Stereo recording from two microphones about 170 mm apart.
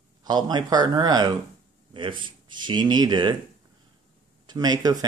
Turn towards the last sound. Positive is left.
turn(degrees=-25)  # may be behind; listen again after turning